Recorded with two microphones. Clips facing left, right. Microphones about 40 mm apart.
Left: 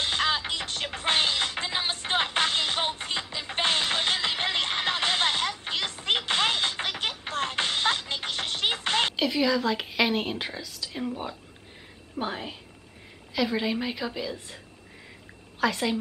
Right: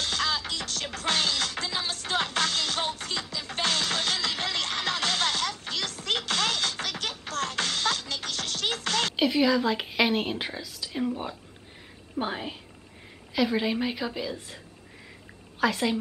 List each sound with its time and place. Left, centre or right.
0.0 s music: left
9.1 s speech: centre
15.6 s speech: centre